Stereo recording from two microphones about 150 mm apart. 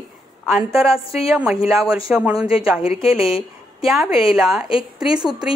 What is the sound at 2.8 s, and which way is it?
Speech, 40° left (ahead or behind).